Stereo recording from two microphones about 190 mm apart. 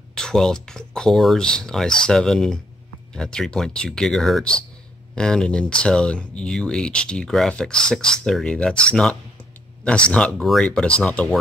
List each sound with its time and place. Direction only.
0.1 s speech: 5° left (ahead or behind)